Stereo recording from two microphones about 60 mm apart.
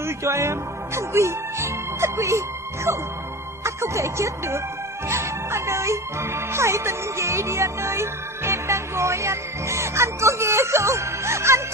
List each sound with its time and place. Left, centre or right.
0.0 s speech: right